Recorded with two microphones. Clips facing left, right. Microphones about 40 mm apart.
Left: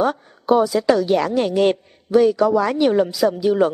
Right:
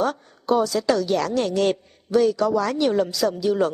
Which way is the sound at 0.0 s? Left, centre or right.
Centre.